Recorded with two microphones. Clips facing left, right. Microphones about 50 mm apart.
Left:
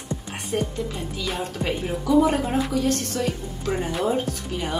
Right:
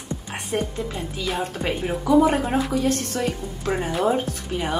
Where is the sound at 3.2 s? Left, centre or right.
Right.